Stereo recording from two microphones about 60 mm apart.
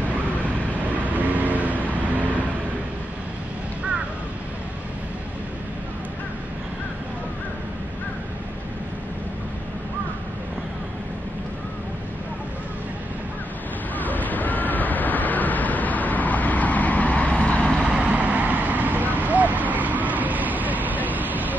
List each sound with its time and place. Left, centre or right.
1.0 s vehicle: right
13.9 s a sound: left
17.8 s vehicle: right